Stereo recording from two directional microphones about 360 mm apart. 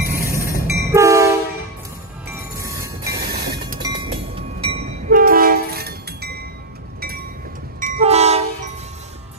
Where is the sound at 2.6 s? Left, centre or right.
Centre.